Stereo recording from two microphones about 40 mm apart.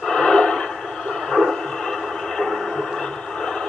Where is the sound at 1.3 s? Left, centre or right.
Centre.